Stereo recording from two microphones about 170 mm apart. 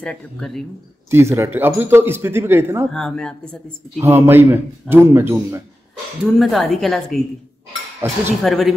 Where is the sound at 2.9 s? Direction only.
5° left (ahead or behind).